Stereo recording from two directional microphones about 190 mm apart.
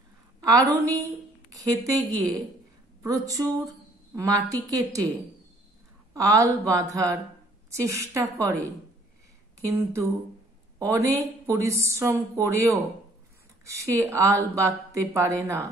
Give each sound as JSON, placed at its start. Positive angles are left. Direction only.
{"t": 0.4, "sound": "a woman's voice", "side_deg": -20}
{"t": 6.1, "sound": "speech", "side_deg": -15}
{"t": 9.7, "sound": "speech", "side_deg": -15}